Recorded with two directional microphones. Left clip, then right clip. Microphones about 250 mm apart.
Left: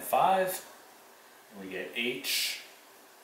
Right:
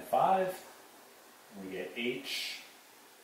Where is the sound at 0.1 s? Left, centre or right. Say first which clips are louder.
Left 3 dB; centre.